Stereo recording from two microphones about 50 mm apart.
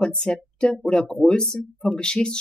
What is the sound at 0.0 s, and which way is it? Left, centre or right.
Speech, centre.